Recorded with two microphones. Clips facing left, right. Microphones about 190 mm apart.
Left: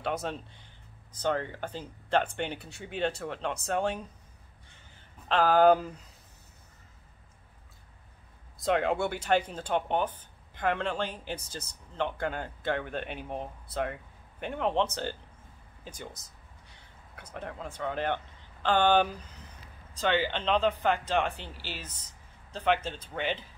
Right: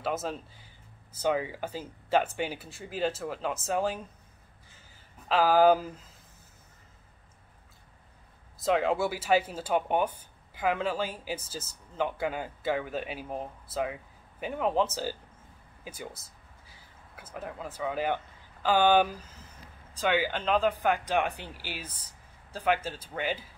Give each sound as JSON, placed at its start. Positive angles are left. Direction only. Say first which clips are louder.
{"t": 0.0, "sound": "speech", "louder": "right 1 dB", "side_deg": 0}
{"t": 5.3, "sound": "speech", "louder": "even", "side_deg": -5}
{"t": 8.5, "sound": "speech", "louder": "right 1 dB", "side_deg": 0}